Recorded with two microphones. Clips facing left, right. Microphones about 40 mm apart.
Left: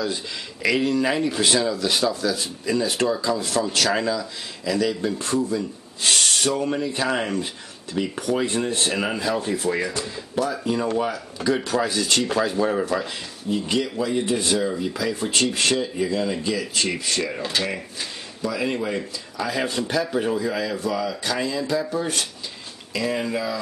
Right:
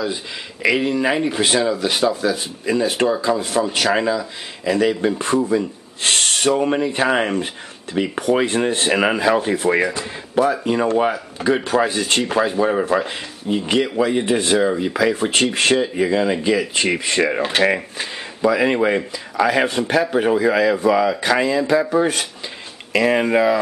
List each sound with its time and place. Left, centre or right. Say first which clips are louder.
0.0 s speech: right 2 dB; centre; by 23.6 s right